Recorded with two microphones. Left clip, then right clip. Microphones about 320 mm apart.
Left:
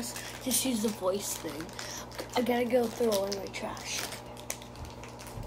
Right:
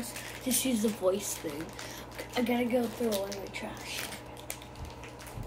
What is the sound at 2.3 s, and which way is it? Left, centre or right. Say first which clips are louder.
Speech: left 2 dB; centre.